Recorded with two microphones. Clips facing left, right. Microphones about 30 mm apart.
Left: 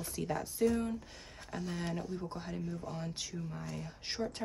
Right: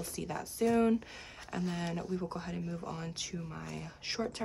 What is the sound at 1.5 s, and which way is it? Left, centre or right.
Speech, right.